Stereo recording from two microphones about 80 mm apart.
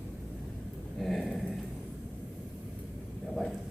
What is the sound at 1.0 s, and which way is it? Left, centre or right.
Speech, centre.